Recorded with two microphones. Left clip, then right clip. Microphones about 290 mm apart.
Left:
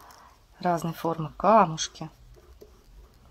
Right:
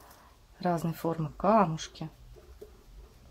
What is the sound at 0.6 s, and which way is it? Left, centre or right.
Speech, left.